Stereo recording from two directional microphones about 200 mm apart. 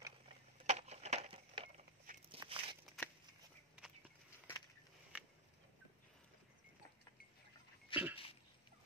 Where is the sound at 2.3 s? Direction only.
25° right (ahead or behind).